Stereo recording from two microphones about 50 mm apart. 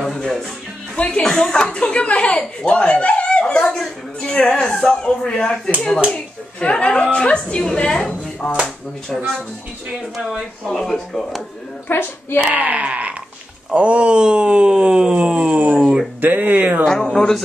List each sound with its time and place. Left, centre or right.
0.0 s speech: centre
0.9 s a woman's voice: left; by 9.3 s centre
10.7 s speech: centre
11.9 s a child's voice: left
12.4 s speech: right
13.7 s a sound: right
16.2 s speech: right
16.8 s speech: centre